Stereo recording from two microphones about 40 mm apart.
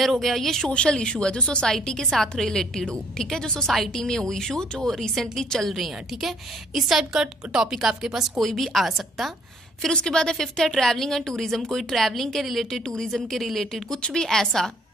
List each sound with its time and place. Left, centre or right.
0.0 s a woman's voice: centre
0.7 s speech: left
3.6 s a woman's voice: centre
8.4 s a woman's voice: centre
9.9 s a woman's voice: centre